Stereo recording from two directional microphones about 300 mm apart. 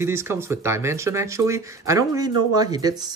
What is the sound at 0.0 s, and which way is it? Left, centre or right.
Speech, centre.